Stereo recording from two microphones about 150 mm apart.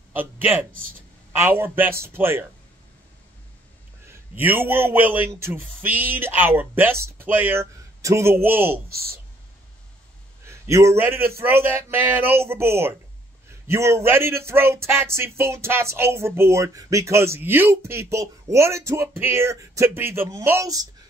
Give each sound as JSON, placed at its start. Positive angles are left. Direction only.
{"t": 0.1, "sound": "speech", "side_deg": -15}
{"t": 4.4, "sound": "a man's voice", "side_deg": -15}
{"t": 8.8, "sound": "speech", "side_deg": -85}
{"t": 10.4, "sound": "speech", "side_deg": -20}